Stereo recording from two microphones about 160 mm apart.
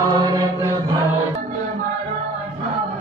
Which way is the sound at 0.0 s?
25° right (ahead or behind).